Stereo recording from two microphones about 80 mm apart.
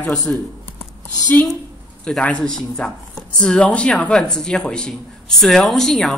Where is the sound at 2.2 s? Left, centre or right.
Centre.